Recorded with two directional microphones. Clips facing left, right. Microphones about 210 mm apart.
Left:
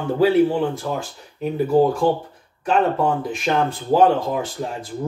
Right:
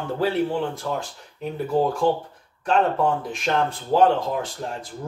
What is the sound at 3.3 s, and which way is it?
Speech, 5° left (ahead or behind).